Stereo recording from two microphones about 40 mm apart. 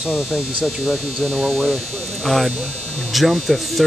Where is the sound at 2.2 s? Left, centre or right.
Centre.